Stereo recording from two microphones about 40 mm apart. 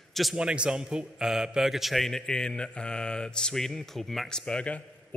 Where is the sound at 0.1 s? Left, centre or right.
Centre.